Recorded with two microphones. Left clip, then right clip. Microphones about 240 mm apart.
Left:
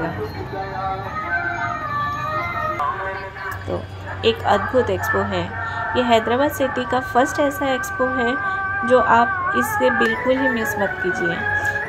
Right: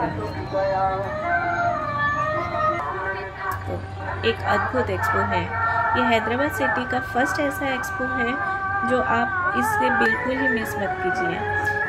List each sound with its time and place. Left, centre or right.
4.2 s a woman's voice: centre
9.8 s music: centre
10.2 s a woman's voice: centre